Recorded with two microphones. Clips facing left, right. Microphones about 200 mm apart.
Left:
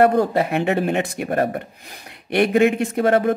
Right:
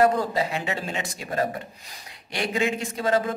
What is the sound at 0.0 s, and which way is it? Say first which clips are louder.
Speech: left 5 dB; 60° left (ahead or behind).